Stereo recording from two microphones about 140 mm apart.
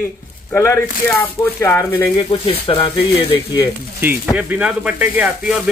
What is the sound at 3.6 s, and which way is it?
Speech, 15° right (ahead or behind).